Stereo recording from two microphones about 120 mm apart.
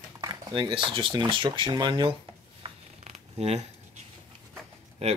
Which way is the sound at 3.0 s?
65° right (ahead or behind).